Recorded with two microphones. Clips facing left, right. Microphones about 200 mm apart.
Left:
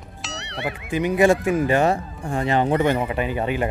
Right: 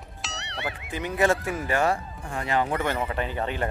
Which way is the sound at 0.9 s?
15° left (ahead or behind).